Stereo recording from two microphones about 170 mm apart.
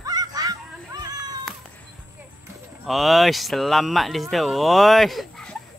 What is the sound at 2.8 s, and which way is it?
Speech, centre (ahead or behind).